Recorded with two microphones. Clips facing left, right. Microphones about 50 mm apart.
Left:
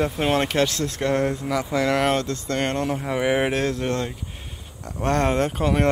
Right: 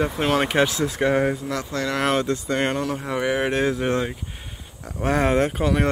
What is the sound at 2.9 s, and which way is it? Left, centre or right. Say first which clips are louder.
Speech: left 1 dB; centre.